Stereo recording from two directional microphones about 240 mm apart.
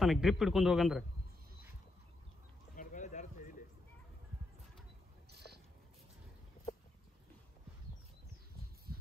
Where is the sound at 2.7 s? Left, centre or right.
Left.